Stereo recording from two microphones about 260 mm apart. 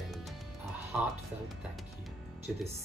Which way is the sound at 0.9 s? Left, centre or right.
Centre.